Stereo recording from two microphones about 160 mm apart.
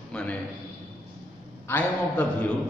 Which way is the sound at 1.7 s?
10° left (ahead or behind).